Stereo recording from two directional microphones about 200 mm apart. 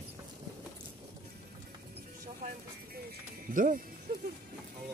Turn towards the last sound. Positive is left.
turn(degrees=-40)  # may be behind; listen again after turning